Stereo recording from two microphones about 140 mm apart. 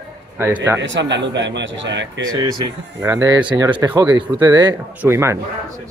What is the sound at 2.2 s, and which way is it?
Speech, 30° right (ahead or behind).